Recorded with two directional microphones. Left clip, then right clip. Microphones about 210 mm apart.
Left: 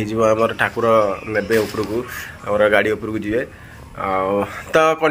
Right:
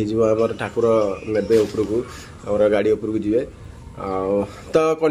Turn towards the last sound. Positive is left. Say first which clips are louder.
# left 3 dB
turn(degrees=0)  # may be behind; listen again after turning